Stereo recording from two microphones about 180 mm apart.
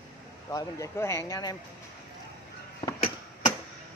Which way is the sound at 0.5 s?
20° left (ahead or behind).